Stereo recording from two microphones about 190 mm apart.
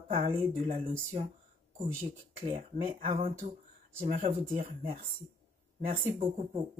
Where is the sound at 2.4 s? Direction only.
30° right (ahead or behind).